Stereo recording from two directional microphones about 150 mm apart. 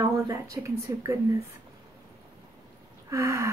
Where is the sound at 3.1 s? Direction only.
20° right (ahead or behind).